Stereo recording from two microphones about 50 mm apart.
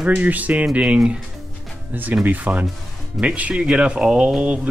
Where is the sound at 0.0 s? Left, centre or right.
Right.